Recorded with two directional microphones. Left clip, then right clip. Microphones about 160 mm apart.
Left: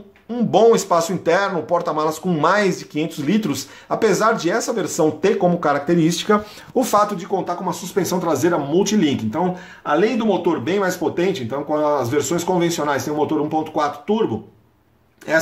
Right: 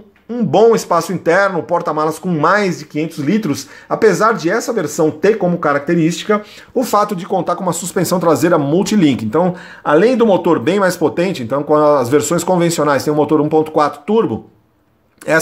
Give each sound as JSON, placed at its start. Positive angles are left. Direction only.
{"t": 0.3, "sound": "speech", "side_deg": -15}
{"t": 6.3, "sound": "speech", "side_deg": 5}
{"t": 7.2, "sound": "speech", "side_deg": -50}
{"t": 15.3, "sound": "speech", "side_deg": -55}